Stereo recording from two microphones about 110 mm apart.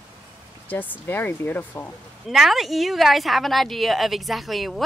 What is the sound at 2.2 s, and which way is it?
Speech, centre (ahead or behind).